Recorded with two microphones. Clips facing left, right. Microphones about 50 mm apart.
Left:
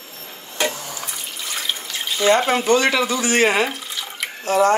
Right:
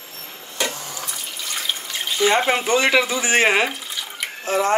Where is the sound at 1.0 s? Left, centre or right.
Centre.